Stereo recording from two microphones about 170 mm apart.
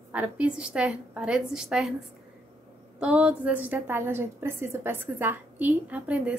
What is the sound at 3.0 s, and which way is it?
A woman's voice, 5° right (ahead or behind).